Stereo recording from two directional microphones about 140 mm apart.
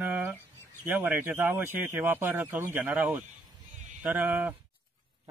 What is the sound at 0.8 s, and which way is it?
Speech, 10° right (ahead or behind).